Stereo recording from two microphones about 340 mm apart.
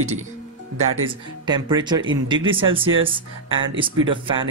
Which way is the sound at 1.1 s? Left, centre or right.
Centre.